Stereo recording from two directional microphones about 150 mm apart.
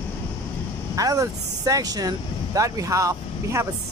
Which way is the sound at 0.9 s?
25° right (ahead or behind).